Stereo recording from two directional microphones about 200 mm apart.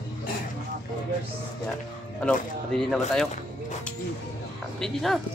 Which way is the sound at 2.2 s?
5° left (ahead or behind).